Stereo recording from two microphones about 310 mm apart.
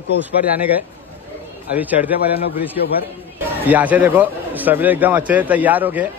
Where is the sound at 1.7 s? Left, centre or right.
Centre.